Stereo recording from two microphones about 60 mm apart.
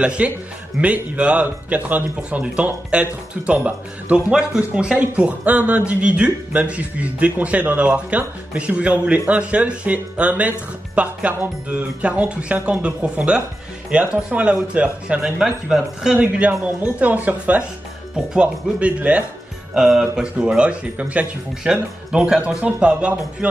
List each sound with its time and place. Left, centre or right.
0.0 s speech: centre
18.1 s speech: centre
19.7 s speech: centre